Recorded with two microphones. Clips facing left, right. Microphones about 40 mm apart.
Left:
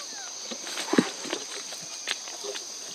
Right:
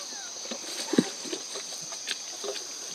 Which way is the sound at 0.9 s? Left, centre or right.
Left.